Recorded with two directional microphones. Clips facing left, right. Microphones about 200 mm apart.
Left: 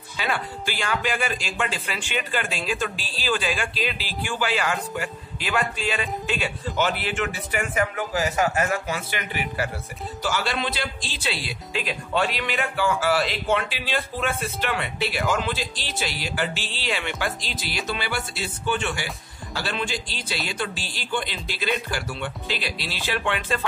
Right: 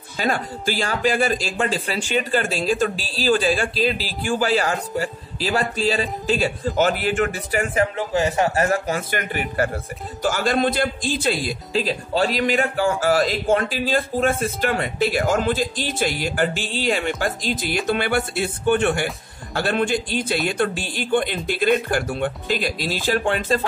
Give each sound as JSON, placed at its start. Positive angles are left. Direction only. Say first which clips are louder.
{"t": 0.2, "sound": "speech", "louder": "right 5 dB", "side_deg": -40}